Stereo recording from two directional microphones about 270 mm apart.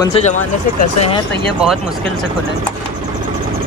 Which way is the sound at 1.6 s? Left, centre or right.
Centre.